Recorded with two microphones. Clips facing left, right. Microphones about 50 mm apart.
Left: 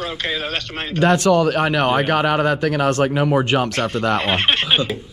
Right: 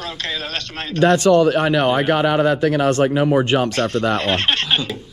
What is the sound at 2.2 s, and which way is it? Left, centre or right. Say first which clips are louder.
Speech: right 2 dB; left.